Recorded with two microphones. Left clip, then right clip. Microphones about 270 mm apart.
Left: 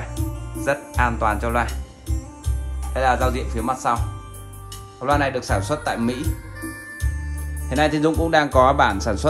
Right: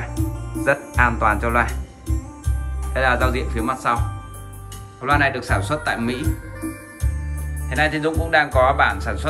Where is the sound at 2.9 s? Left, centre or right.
Centre.